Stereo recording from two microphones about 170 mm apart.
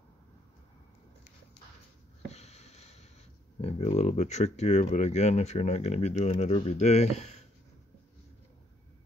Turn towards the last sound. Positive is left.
turn(degrees=40)  # may be behind; listen again after turning